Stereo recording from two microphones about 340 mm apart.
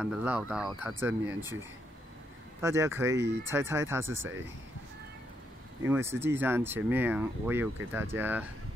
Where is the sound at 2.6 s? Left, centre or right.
Centre.